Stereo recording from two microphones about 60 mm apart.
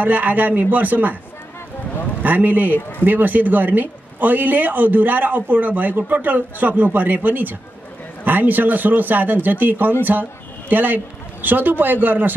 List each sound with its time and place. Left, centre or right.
0.0 s speech: right
2.2 s speech: right